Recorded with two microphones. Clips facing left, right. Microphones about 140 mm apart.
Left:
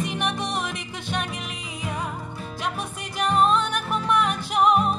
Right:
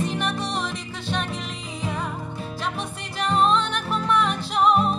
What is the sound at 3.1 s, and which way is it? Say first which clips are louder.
Music: even; 15° left (ahead or behind).